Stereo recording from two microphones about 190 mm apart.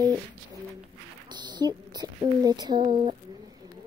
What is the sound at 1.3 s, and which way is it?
Speech, 20° right (ahead or behind).